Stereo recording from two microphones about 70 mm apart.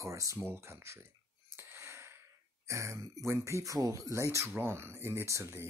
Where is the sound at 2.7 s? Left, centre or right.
Right.